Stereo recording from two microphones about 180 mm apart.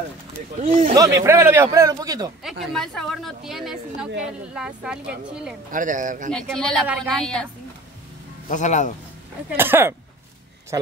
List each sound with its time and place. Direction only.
0.6 s speech: 45° right (ahead or behind)
0.9 s a man's voice: 15° right (ahead or behind)
2.7 s speech: 5° left (ahead or behind)
5.7 s speech: 45° right (ahead or behind)
6.3 s speech: 5° left (ahead or behind)
8.5 s speech: 45° left (ahead or behind)
9.5 s a man's voice: 10° right (ahead or behind)